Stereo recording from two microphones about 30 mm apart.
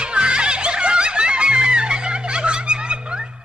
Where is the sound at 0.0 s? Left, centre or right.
Right.